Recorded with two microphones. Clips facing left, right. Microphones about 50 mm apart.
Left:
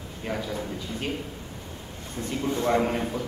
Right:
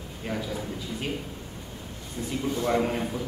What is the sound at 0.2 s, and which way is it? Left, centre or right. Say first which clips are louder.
Speech: left 1 dB; centre.